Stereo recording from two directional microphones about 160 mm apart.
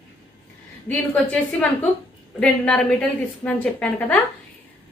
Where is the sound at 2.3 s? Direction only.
5° left (ahead or behind).